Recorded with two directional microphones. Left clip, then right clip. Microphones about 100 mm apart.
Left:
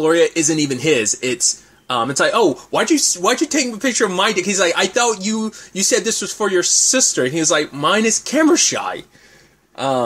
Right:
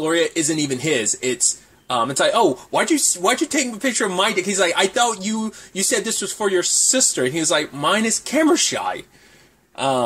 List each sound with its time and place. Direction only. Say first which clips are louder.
0.0 s speech: left 5 dB; 50° left (ahead or behind); by 10.0 s 30° left (ahead or behind)